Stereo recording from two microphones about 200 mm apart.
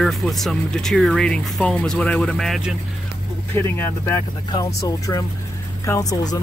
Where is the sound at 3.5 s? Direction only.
10° left (ahead or behind).